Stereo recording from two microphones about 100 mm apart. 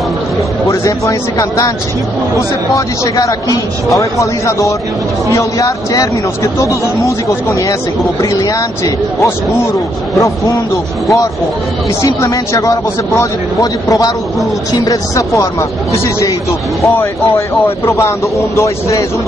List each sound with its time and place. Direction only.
0.7 s speech: 30° left (ahead or behind)
2.7 s speech: 35° left (ahead or behind)